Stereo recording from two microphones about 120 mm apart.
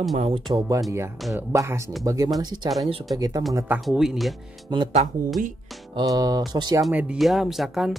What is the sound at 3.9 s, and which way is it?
Speech, centre (ahead or behind).